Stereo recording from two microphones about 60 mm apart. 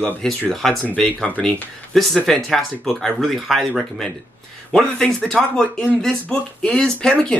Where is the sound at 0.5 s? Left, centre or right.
Centre.